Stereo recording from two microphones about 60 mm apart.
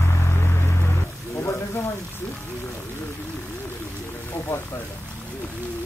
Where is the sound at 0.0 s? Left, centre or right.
Left.